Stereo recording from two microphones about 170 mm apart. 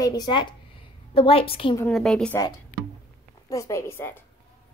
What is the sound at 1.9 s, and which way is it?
Speech, 5° left (ahead or behind).